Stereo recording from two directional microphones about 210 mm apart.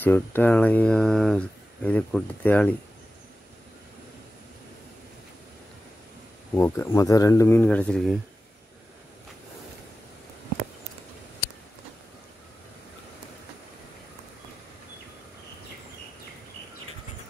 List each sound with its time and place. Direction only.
0.0 s speech: 10° left (ahead or behind)
6.5 s speech: 10° left (ahead or behind)